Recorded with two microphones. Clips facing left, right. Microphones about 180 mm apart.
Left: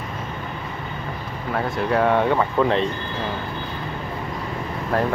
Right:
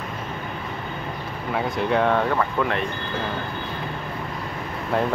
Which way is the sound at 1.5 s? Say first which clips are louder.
Left 1 dB; centre (ahead or behind).